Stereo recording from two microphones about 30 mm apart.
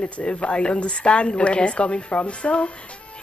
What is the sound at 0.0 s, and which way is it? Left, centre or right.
Speech, left.